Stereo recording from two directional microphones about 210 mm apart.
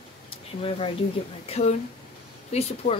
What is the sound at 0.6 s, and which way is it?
Speech, 25° left (ahead or behind).